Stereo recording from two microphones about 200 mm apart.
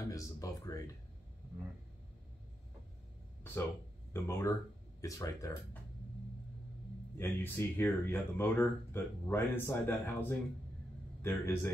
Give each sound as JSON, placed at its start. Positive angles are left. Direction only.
{"t": 0.1, "sound": "speech", "side_deg": 15}
{"t": 4.1, "sound": "speech", "side_deg": 15}
{"t": 7.2, "sound": "speech", "side_deg": 10}